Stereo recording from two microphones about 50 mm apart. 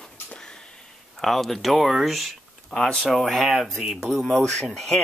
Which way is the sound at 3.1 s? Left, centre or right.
Centre.